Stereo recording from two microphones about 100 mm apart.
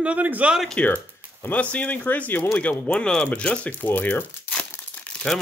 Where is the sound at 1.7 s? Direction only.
15° left (ahead or behind).